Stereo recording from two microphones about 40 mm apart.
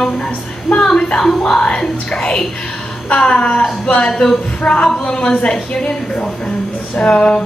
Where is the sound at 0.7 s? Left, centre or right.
Centre.